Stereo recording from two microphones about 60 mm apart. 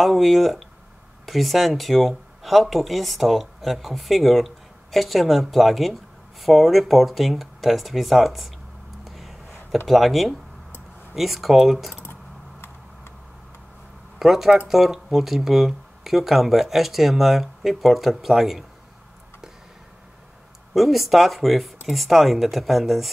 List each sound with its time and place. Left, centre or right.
0.0 s speech: centre
9.0 s a sound: centre
9.8 s speech: centre
11.9 s a sound: left
14.1 s speech: centre
20.7 s speech: centre